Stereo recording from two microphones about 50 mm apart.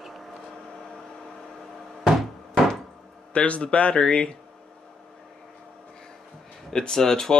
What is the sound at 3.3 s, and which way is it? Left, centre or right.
Speech, left.